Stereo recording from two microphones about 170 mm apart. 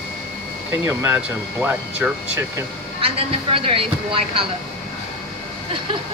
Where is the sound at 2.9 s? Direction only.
35° right (ahead or behind).